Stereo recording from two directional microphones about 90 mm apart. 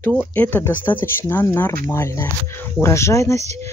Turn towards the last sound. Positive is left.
turn(degrees=35)  # may be behind; listen again after turning